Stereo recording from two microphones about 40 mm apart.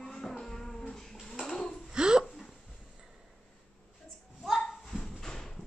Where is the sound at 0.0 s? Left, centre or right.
Centre.